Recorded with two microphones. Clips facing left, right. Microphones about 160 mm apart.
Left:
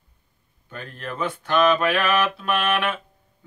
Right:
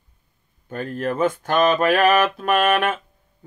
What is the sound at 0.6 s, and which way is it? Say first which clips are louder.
Mantra: right 10 dB; 45° right (ahead or behind).